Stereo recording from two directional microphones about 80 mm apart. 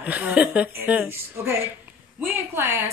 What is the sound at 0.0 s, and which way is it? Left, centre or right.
Speech, centre.